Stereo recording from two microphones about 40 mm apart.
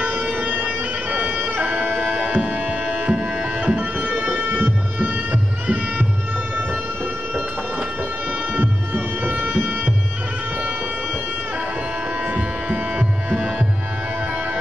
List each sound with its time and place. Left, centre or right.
0.0 s bagpipes: right
0.7 s bagpipes: right
1.5 s music: right
2.2 s tabla: right
3.7 s music: right
8.5 s music: right
9.3 s music: right
12.3 s music: right